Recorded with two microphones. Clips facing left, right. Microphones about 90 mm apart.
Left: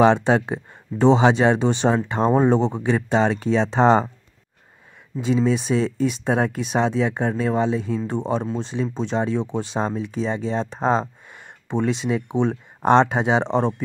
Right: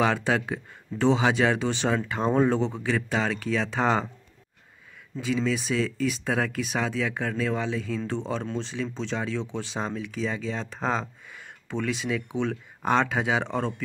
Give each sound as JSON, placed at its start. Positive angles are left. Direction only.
{"t": 0.0, "sound": "speech", "side_deg": 25}
{"t": 5.2, "sound": "speech", "side_deg": 25}
{"t": 9.8, "sound": "speech", "side_deg": 30}